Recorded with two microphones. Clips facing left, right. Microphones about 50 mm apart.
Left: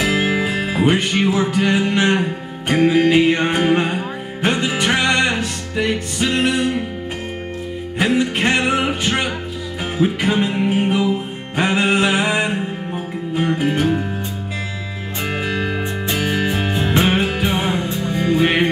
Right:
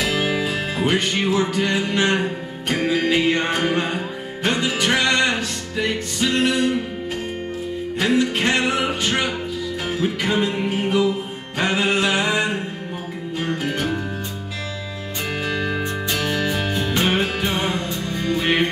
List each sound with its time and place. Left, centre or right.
0.0 s music: centre
8.0 s music: centre
15.4 s music: centre